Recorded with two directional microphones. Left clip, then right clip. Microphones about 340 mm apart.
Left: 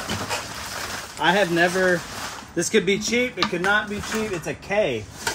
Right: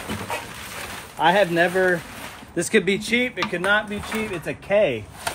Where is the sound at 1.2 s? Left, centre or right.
Right.